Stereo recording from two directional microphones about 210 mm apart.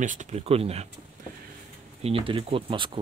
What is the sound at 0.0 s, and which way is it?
Speech, 35° right (ahead or behind).